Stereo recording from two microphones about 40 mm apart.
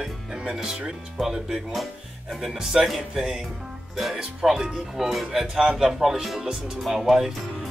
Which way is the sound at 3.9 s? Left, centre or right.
Centre.